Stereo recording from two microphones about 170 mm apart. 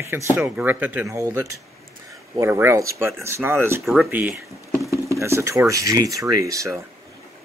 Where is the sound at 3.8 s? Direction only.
Centre (ahead or behind).